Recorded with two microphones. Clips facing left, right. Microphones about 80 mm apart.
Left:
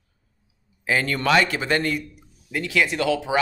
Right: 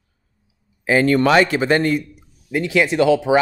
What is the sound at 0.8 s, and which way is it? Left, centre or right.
Speech, right.